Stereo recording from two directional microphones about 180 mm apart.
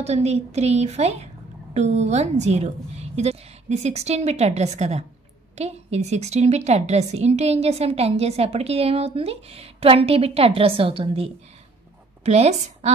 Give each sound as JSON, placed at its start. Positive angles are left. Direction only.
{"t": 0.0, "sound": "a woman's voice", "side_deg": -35}
{"t": 12.3, "sound": "a woman's voice", "side_deg": -35}